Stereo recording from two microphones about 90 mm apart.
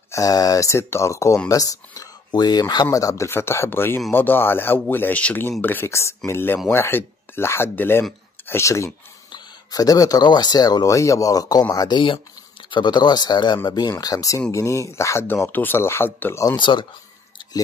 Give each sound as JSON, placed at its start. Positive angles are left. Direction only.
{"t": 0.1, "sound": "speech", "side_deg": 40}
{"t": 3.3, "sound": "speech", "side_deg": 25}
{"t": 9.3, "sound": "speech", "side_deg": 45}
{"t": 12.6, "sound": "speech", "side_deg": 60}
{"t": 16.5, "sound": "speech", "side_deg": 60}